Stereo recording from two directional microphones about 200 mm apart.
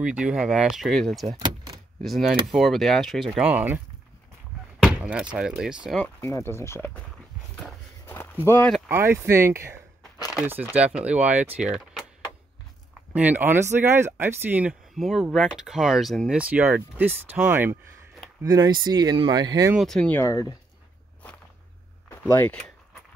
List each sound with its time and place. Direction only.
0.0 s speech: 5° right (ahead or behind)
1.4 s vehicle: 20° right (ahead or behind)
2.0 s speech: centre (ahead or behind)
4.8 s door: 5° right (ahead or behind)
5.3 s speech: 5° right (ahead or behind)
6.2 s speech: 15° left (ahead or behind)
7.5 s walk: 5° left (ahead or behind)
8.5 s speech: 10° left (ahead or behind)
8.7 s speech: 10° right (ahead or behind)
13.1 s speech: 10° right (ahead or behind)
19.7 s speech: centre (ahead or behind); by 20.5 s 15° left (ahead or behind)
22.3 s speech: 5° left (ahead or behind)